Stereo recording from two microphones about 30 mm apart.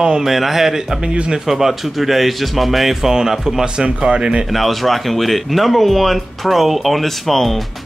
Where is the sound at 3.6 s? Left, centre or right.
Right.